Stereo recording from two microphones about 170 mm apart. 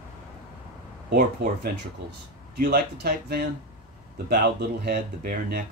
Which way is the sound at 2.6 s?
70° right (ahead or behind).